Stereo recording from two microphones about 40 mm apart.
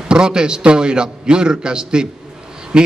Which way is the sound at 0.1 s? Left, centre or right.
Right.